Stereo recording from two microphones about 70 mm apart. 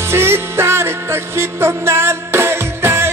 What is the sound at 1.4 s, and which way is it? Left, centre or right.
Music, right.